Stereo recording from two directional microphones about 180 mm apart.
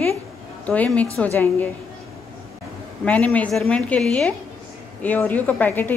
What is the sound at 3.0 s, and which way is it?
A woman's voice, 10° left (ahead or behind).